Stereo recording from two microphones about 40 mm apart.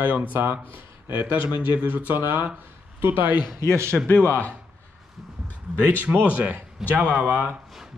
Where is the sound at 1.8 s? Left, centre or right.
Right.